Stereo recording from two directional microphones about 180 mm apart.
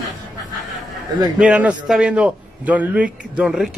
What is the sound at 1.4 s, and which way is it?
A man's voice, 5° right (ahead or behind).